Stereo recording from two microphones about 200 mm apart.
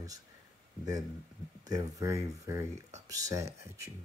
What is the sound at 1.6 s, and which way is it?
Speech, 20° right (ahead or behind).